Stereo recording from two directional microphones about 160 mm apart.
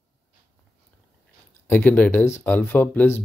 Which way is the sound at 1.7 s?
10° left (ahead or behind).